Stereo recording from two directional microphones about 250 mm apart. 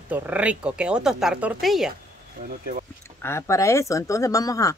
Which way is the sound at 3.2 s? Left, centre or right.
Centre.